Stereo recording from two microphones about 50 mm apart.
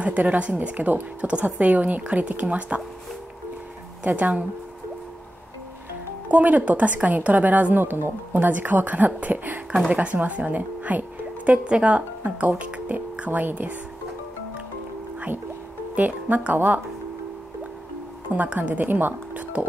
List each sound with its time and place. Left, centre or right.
0.0 s speech: right
4.0 s speech: right
6.3 s speech: right
7.8 s a woman's voice: right
16.0 s speech: right
18.3 s speech: right